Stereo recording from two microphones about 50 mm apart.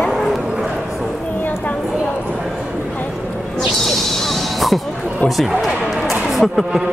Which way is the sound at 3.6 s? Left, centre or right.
Centre.